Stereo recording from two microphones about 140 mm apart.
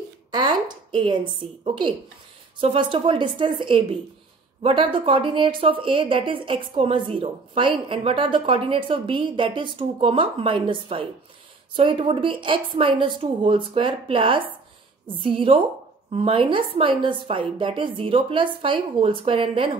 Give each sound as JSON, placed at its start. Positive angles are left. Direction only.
{"t": 0.3, "sound": "a woman's voice", "side_deg": -30}